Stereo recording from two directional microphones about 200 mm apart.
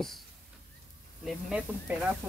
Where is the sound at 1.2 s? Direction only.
5° right (ahead or behind).